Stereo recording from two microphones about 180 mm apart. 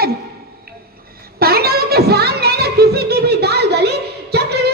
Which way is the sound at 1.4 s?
60° right (ahead or behind).